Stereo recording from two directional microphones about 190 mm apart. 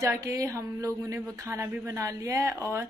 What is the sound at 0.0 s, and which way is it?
A woman's voice, 15° right (ahead or behind).